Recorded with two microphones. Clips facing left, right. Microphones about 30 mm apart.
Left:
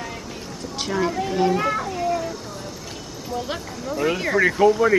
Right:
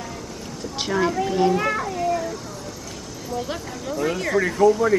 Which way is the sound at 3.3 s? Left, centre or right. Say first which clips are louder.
Even; centre.